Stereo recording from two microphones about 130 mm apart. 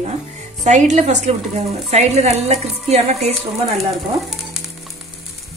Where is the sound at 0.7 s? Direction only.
65° right (ahead or behind).